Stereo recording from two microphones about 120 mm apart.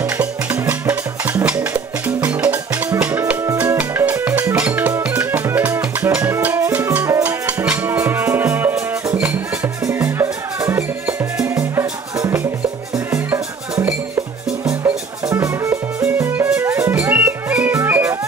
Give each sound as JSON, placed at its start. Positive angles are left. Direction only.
{"t": 0.0, "sound": "music", "side_deg": -15}
{"t": 17.1, "sound": "music", "side_deg": -10}
{"t": 17.7, "sound": "music", "side_deg": -20}